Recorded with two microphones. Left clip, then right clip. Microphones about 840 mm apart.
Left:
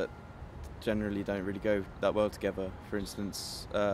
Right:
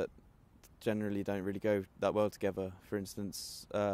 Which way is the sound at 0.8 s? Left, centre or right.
Right.